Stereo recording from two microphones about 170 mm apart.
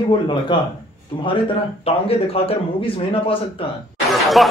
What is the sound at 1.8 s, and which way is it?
A man's voice, 35° left (ahead or behind).